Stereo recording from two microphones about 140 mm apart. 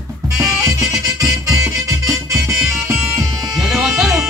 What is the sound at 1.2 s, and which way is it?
Music, 25° right (ahead or behind).